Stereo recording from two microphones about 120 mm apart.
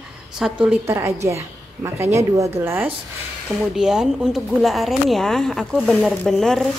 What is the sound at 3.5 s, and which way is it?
A woman's voice, 5° right (ahead or behind).